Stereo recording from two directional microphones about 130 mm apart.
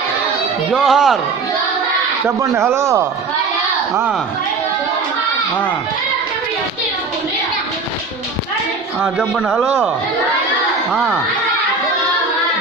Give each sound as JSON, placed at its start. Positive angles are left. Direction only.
{"t": 0.7, "sound": "speech", "side_deg": -5}
{"t": 2.2, "sound": "speech", "side_deg": -20}
{"t": 9.0, "sound": "speech", "side_deg": 5}
{"t": 10.9, "sound": "speech", "side_deg": 0}